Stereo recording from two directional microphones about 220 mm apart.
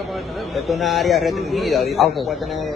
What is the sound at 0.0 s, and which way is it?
A man's voice, centre (ahead or behind).